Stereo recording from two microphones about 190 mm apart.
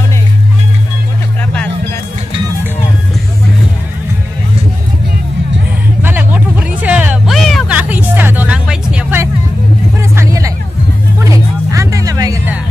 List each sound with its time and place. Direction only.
6.0 s a sound: 10° right (ahead or behind)
10.1 s vehicle: 15° right (ahead or behind)
11.2 s music: 15° right (ahead or behind)